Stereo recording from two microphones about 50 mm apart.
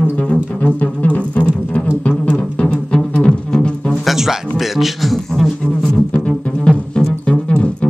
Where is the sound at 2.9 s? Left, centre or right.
Centre.